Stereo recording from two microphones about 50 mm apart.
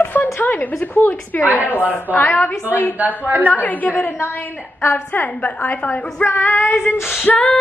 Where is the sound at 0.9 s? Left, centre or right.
Left.